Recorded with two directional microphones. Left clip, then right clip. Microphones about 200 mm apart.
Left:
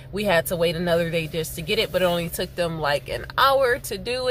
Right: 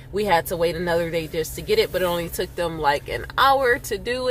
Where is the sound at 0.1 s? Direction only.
10° left (ahead or behind).